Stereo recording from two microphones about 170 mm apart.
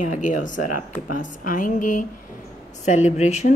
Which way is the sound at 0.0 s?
50° left (ahead or behind).